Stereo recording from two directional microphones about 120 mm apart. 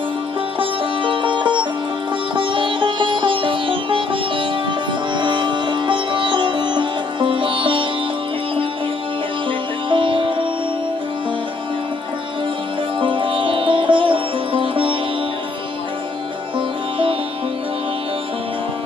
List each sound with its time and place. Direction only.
0.6 s music: 45° right (ahead or behind)
2.3 s sitar: 45° right (ahead or behind)
9.8 s music: 45° right (ahead or behind)
13.0 s sitar: 45° right (ahead or behind)